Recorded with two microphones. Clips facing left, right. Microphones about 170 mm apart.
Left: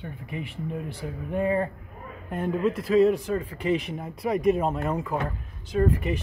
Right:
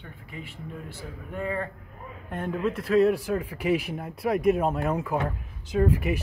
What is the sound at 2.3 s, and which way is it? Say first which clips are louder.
Speech: left 3 dB; 5° left (ahead or behind).